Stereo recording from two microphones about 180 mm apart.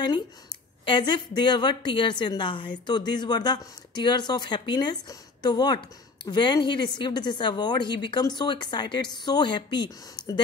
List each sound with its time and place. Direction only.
0.8 s speech: 25° left (ahead or behind)